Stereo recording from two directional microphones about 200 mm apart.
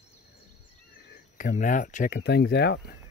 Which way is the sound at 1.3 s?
40° left (ahead or behind).